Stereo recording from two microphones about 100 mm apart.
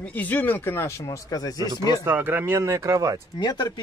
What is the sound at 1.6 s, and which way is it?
Speech, 40° right (ahead or behind).